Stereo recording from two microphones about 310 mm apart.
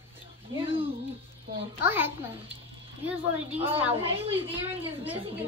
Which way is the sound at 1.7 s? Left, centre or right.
Centre.